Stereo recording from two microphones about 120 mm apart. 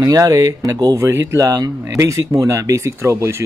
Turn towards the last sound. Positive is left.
turn(degrees=-25)  # may be behind; listen again after turning